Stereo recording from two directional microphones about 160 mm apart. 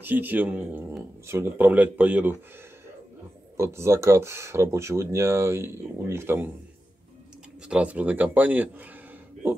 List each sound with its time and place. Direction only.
0.0 s speech: 10° right (ahead or behind)
3.5 s speech: 15° right (ahead or behind)
7.6 s speech: 5° right (ahead or behind)